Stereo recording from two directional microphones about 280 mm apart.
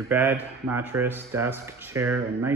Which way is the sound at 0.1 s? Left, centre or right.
Centre.